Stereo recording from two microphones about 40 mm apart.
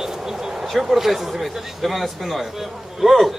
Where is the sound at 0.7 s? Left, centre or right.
Centre.